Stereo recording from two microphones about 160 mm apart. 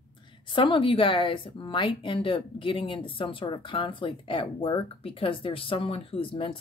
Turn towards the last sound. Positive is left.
turn(degrees=35)  # may be behind; listen again after turning